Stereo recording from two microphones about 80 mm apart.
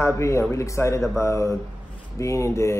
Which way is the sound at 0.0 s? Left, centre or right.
Left.